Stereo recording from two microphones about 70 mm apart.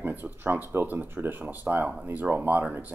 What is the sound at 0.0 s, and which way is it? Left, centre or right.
Speech, right.